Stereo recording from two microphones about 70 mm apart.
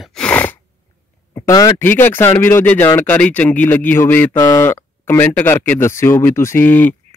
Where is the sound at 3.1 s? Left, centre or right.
Left.